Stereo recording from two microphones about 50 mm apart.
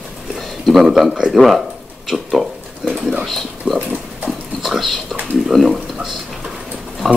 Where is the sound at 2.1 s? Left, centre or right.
Centre.